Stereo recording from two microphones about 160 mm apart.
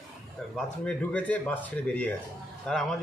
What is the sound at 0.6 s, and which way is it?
A man's voice, 5° left (ahead or behind).